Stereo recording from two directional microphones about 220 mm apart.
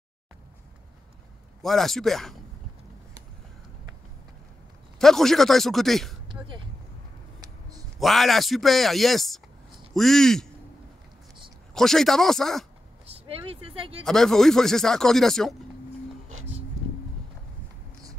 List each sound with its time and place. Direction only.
1.6 s speech: centre (ahead or behind)
4.9 s speech: centre (ahead or behind)
6.2 s a sound: 20° right (ahead or behind)
8.0 s speech: centre (ahead or behind)
11.7 s speech: centre (ahead or behind)
13.0 s speech: 25° right (ahead or behind)
14.0 s speech: centre (ahead or behind)